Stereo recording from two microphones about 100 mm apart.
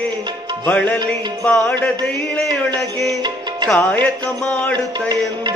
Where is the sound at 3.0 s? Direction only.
45° right (ahead or behind).